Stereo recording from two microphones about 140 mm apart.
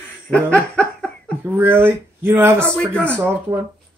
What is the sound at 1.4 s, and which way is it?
Speech, 15° right (ahead or behind).